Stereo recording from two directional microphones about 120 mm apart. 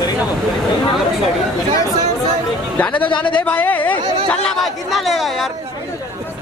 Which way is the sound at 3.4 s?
15° left (ahead or behind).